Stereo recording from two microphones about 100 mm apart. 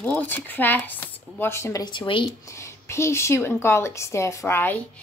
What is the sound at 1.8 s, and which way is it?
Speech, 50° left (ahead or behind).